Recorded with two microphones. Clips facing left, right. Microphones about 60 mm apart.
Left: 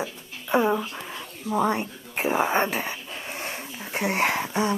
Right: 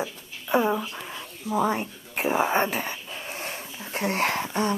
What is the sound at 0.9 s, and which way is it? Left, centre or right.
Dog, centre.